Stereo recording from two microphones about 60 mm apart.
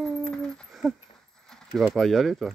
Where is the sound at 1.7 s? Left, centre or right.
Centre.